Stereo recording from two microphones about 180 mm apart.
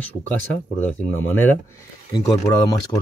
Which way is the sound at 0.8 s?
10° left (ahead or behind).